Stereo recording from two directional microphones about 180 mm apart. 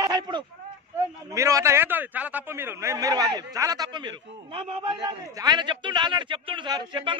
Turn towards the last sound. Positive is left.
turn(degrees=-25)  # may be behind; listen again after turning